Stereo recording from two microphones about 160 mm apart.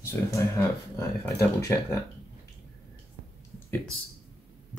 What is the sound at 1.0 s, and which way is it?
Speech, 20° left (ahead or behind).